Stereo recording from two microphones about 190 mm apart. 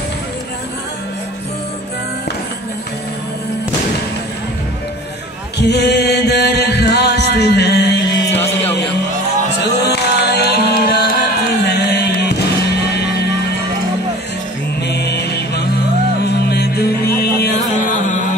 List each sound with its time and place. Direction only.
5.6 s chant: 60° left (ahead or behind)
9.6 s music: 60° left (ahead or behind)
14.8 s mantra: 60° left (ahead or behind)
16.4 s music: 60° left (ahead or behind)